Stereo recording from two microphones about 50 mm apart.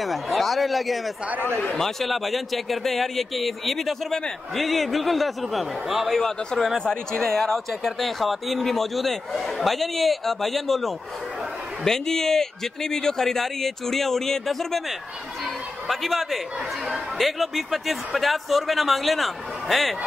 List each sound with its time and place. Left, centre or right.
0.0 s a man's voice: centre
1.3 s speech: right
1.8 s a man's voice: centre
15.4 s a sound: centre
16.8 s a man's voice: centre